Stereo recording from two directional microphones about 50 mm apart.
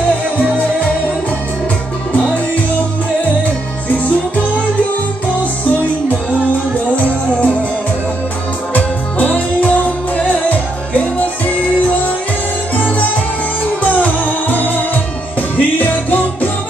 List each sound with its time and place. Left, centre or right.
2.1 s music: left
7.0 s music: left
8.7 s music: left
13.8 s music: left